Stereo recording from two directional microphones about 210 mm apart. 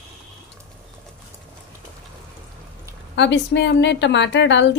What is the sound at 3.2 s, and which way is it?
A woman's voice, 55° left (ahead or behind).